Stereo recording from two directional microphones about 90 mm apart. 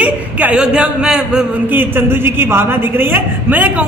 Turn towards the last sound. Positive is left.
turn(degrees=-15)  # may be behind; listen again after turning